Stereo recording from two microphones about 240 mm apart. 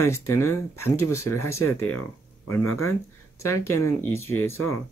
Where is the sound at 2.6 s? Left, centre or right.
Left.